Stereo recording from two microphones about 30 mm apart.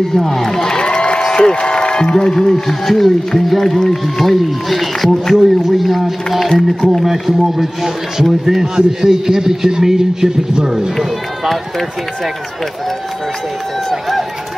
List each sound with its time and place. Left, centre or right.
0.1 s speech: centre
0.7 s a sound: left
1.8 s music: left
2.1 s speech: centre
2.5 s speech: centre; by 10.9 s right